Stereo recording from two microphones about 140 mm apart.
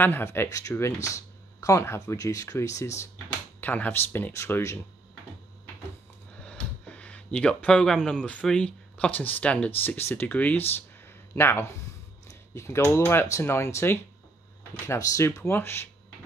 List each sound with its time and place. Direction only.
0.0 s speech: 15° left (ahead or behind)
6.4 s speech: 10° left (ahead or behind)